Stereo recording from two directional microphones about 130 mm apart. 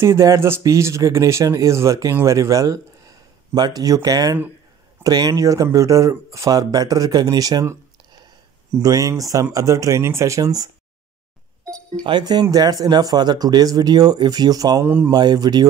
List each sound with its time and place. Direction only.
0.0 s speech: 20° right (ahead or behind)
8.7 s speech: 30° right (ahead or behind)
12.0 s speech: 35° right (ahead or behind)
14.9 s speech: 15° right (ahead or behind)
15.1 s speech: 30° right (ahead or behind)